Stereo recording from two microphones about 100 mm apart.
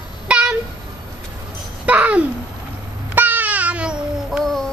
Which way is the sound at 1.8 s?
15° right (ahead or behind).